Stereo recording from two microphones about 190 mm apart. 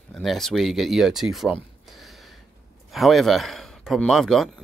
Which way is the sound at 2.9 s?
Centre (ahead or behind).